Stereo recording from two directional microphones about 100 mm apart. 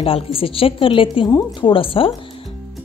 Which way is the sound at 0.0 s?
65° left (ahead or behind).